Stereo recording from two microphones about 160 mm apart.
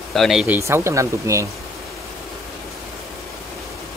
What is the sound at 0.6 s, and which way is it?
Speech, 15° right (ahead or behind).